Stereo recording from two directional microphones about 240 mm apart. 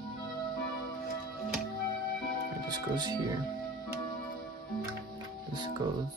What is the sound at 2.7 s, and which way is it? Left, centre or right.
Speech, centre.